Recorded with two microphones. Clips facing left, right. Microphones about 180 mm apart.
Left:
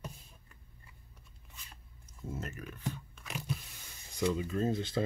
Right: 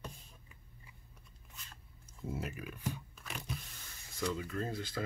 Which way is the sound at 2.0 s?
10° right (ahead or behind).